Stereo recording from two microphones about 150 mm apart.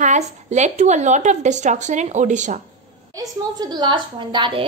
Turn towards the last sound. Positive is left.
turn(degrees=-35)  # may be behind; listen again after turning